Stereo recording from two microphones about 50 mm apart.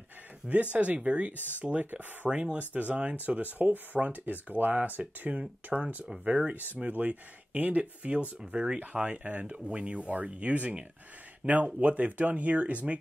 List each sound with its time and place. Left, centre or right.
0.5 s speech: right
1.3 s speech: left
1.6 s speech: right